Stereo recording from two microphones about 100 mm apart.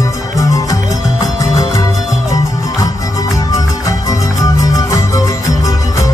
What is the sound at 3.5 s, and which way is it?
Music, 35° left (ahead or behind).